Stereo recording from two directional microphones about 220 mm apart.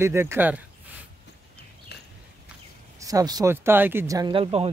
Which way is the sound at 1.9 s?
50° left (ahead or behind).